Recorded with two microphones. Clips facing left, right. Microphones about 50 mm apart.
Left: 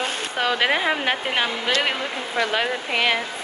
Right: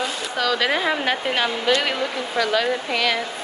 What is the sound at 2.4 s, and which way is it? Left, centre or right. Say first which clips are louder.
Speech: right 2 dB; left.